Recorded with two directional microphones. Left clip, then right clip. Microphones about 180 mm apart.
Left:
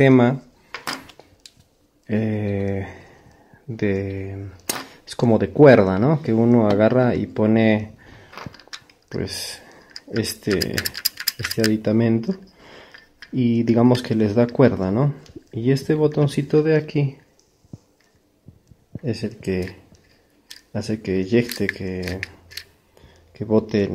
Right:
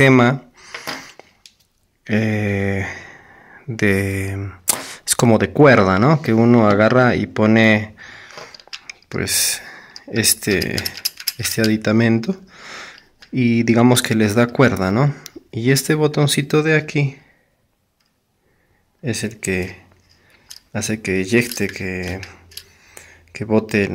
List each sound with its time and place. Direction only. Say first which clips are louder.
0.0 s speech: right 3 dB; 20° right (ahead or behind)
1.2 s a sound: right 4 dB; 20° right (ahead or behind)
2.0 s speech: right 4 dB; 15° right (ahead or behind)
11.0 s mechanisms: even; 20° left (ahead or behind)
11.7 s speech: right 3 dB; 15° right (ahead or behind)
12.5 s a sound: right 9 dB; 15° right (ahead or behind)
14.6 s speech: right 2 dB; 15° right (ahead or behind)
19.0 s speech: right 3 dB; 5° right (ahead or behind)
22.0 s speech: right 1 dB; 15° right (ahead or behind)
23.3 s speech: right 2 dB; 5° right (ahead or behind)